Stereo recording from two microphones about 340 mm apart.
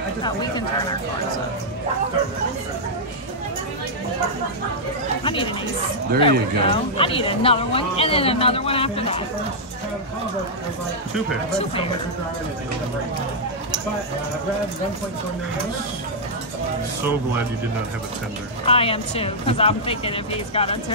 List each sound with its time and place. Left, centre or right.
0.2 s speech: centre
5.2 s speech: centre
18.7 s speech: centre